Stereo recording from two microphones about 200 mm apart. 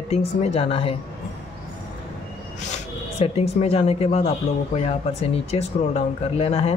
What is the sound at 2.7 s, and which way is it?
Speech, 30° left (ahead or behind).